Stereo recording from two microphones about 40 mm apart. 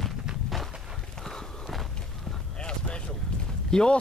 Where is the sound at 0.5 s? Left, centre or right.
Centre.